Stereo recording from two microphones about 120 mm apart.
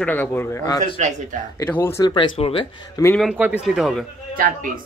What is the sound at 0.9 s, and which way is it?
Speech, 90° right.